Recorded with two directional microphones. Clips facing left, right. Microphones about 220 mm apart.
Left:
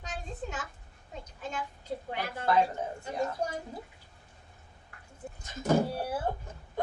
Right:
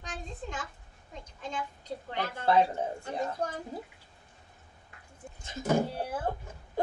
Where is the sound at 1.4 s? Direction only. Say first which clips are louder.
Right 1 dB; 10° left (ahead or behind).